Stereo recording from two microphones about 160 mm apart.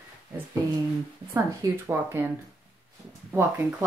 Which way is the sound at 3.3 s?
15° right (ahead or behind).